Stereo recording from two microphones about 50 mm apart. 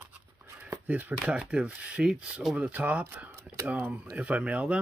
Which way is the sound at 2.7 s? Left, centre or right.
Right.